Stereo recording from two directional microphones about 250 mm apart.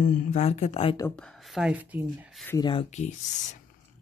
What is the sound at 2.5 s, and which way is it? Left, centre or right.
Speech, centre.